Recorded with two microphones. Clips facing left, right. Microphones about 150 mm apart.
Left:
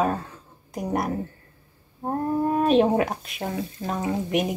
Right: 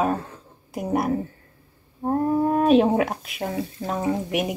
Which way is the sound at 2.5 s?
Centre (ahead or behind).